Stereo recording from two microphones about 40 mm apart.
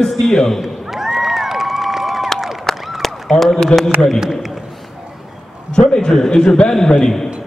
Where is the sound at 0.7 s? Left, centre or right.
Centre.